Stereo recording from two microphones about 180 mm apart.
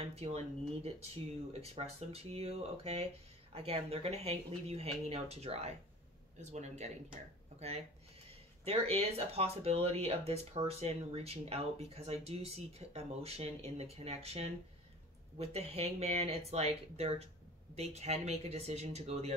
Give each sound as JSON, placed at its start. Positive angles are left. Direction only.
{"t": 0.0, "sound": "speech", "side_deg": -35}